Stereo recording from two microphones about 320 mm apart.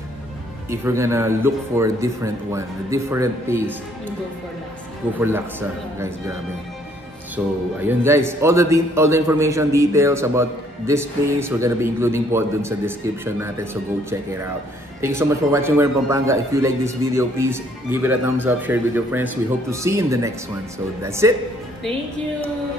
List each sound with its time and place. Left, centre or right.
0.7 s a man's voice: centre
5.2 s a man's voice: centre
7.4 s a man's voice: centre
15.0 s a man's voice: centre